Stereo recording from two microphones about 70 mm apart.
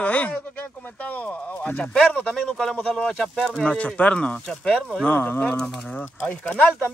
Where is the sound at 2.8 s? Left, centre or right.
Centre.